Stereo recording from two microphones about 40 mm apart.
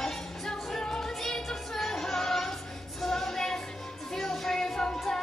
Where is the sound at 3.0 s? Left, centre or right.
Centre.